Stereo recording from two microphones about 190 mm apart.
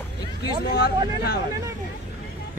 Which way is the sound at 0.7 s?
55° left (ahead or behind).